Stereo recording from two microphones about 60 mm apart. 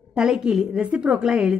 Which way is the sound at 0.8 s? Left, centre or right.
Right.